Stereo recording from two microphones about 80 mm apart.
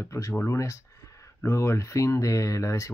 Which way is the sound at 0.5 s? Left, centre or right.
Left.